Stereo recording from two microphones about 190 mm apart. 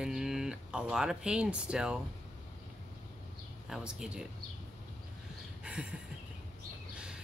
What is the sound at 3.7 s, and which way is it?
Speech, 5° right (ahead or behind).